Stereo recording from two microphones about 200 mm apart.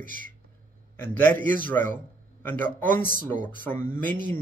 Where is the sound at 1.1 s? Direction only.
10° left (ahead or behind).